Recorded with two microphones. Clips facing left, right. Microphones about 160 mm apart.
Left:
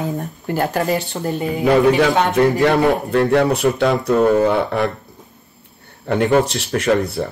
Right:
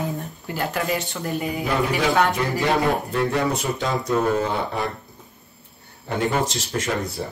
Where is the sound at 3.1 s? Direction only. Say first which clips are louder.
Left 7 dB; 65° left (ahead or behind).